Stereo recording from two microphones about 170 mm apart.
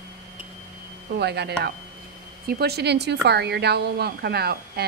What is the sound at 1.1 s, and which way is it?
A woman's voice, 75° right (ahead or behind).